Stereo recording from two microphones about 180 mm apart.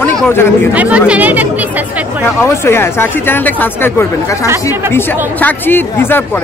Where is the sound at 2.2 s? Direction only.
15° left (ahead or behind).